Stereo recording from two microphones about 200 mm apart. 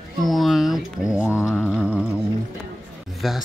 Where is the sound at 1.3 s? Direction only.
15° left (ahead or behind).